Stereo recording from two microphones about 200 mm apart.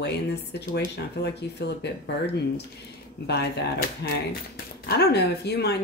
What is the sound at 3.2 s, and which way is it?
Speech, 55° left (ahead or behind).